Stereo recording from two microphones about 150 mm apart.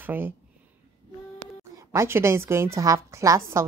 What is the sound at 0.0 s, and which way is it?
Speech, 15° right (ahead or behind).